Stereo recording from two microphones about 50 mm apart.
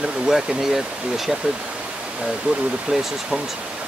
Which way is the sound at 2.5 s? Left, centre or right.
Centre.